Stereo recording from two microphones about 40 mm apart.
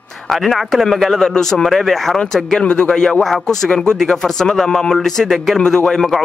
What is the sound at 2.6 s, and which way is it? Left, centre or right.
Speech, left.